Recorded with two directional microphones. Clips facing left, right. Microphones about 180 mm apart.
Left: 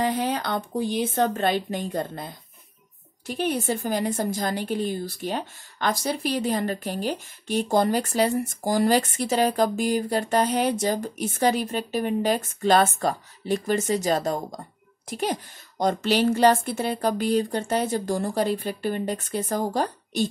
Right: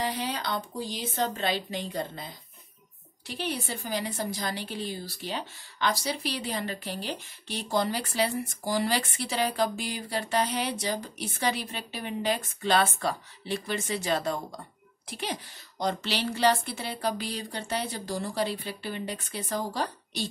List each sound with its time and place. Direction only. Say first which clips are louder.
0.0 s a woman's voice: left 6 dB; 50° left (ahead or behind)